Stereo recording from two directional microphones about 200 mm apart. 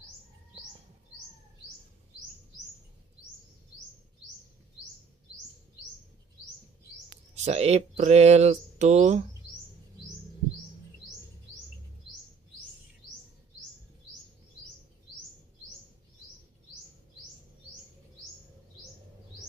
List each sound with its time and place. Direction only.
7.3 s speech: 35° right (ahead or behind)